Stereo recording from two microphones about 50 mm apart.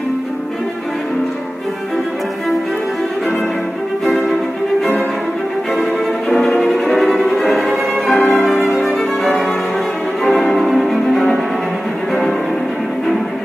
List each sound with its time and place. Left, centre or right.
4.0 s violin: centre
5.8 s violin: centre
10.3 s music: centre